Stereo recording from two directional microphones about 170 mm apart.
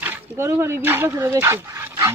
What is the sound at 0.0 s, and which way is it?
Speech, 15° right (ahead or behind).